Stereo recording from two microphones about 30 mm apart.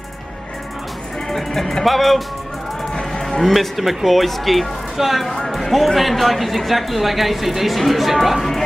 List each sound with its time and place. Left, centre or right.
1.3 s music: centre
1.9 s speech: centre
2.9 s music: left
3.3 s speech: centre
5.2 s speech: centre